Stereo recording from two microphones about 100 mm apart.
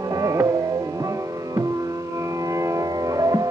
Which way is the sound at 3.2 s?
35° right (ahead or behind).